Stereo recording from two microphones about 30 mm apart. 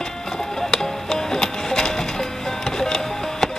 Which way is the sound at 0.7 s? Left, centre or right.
Centre.